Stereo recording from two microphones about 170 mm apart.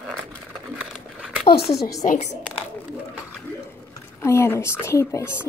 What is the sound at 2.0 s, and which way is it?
Speech, 45° left (ahead or behind).